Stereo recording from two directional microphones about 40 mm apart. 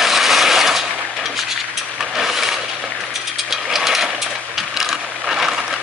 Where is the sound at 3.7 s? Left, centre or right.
Centre.